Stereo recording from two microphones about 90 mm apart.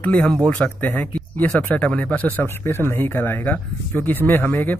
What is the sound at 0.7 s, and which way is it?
Speech, 15° left (ahead or behind).